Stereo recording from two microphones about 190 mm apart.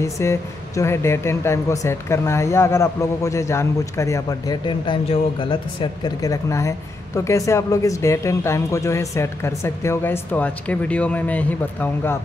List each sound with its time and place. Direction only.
0.0 s speech: 15° left (ahead or behind)